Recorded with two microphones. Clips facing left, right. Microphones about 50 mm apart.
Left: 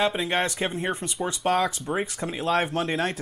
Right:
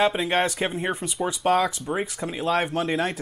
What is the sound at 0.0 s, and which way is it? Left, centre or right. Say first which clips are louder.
Speech: right 3 dB; centre.